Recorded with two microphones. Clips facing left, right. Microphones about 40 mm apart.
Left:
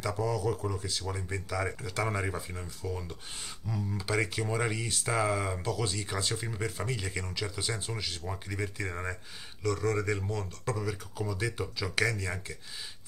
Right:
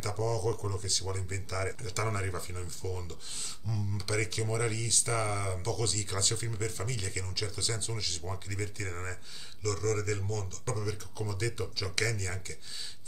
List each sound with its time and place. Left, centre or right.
0.0 s speech: centre